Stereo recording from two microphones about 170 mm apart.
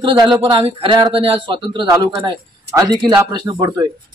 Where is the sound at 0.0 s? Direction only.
30° right (ahead or behind).